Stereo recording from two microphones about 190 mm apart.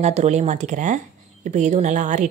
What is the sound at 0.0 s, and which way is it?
Speech, 35° right (ahead or behind).